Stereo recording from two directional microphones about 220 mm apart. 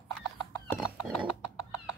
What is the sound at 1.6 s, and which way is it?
Bird, 15° left (ahead or behind).